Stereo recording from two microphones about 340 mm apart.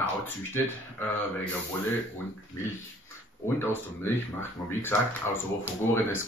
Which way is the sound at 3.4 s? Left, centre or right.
Centre.